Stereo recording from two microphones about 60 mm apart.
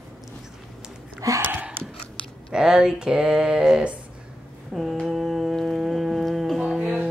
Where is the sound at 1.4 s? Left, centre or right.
Right.